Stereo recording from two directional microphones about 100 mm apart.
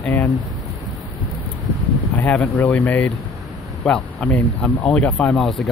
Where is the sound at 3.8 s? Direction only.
10° left (ahead or behind).